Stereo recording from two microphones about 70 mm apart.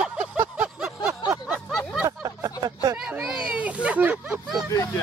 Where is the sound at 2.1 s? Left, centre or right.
Right.